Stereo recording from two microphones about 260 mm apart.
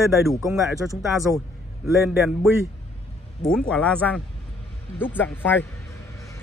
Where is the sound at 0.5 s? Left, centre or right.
Centre.